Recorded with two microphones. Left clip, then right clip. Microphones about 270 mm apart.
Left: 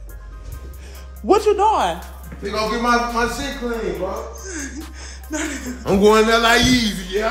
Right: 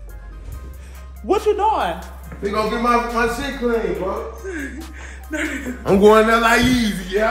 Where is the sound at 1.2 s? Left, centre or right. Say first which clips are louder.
Left 2 dB; left.